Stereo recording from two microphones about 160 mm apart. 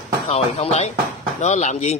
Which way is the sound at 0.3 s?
40° left (ahead or behind).